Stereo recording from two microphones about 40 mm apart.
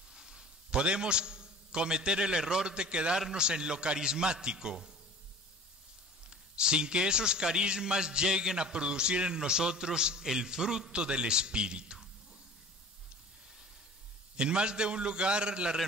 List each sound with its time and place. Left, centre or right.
0.1 s a man's voice: centre
6.3 s a man's voice: right
14.3 s a man's voice: right